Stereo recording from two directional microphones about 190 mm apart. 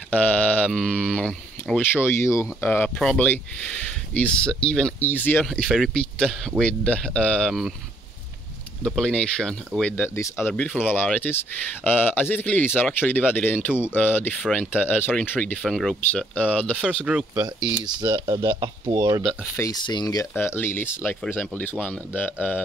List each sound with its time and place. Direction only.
0.1 s speech: 10° left (ahead or behind)
8.8 s speech: 5° left (ahead or behind)
17.0 s speech: 5° right (ahead or behind)
18.0 s speech: 25° right (ahead or behind)
19.2 s speech: 15° left (ahead or behind)